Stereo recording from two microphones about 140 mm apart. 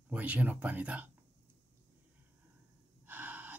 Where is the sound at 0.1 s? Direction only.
10° right (ahead or behind).